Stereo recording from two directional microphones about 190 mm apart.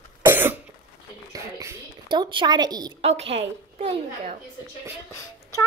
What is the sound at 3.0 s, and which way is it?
A child's voice, 30° right (ahead or behind).